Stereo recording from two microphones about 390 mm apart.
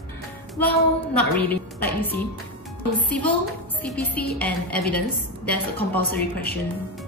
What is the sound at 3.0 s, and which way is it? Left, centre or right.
A woman's voice, centre.